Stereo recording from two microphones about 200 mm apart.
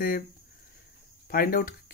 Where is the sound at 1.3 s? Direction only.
45° left (ahead or behind).